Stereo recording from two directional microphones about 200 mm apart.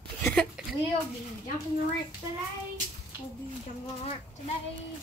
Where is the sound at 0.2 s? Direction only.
5° left (ahead or behind).